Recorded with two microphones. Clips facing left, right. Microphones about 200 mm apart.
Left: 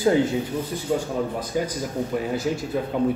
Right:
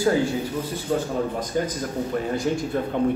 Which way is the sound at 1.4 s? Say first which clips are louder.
Even; 10° left (ahead or behind).